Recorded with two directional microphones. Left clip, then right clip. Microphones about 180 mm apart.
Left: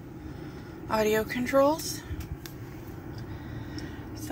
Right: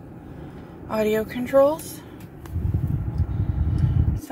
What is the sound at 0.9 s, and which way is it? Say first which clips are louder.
Speech: right 3 dB; 10° right (ahead or behind).